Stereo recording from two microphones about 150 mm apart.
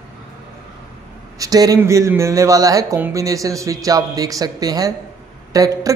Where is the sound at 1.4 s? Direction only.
25° right (ahead or behind).